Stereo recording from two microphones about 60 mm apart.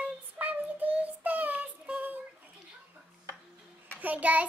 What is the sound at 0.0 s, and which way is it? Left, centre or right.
Child singing, right.